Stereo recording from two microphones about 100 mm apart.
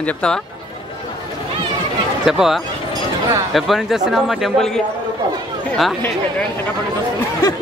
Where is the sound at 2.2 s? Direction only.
5° right (ahead or behind).